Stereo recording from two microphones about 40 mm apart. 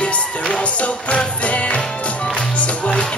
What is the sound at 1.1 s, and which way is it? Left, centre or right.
Music, left.